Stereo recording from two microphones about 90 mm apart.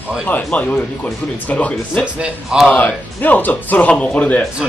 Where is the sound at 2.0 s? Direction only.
15° right (ahead or behind).